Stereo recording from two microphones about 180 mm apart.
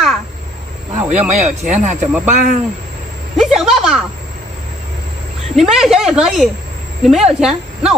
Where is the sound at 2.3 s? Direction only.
45° right (ahead or behind).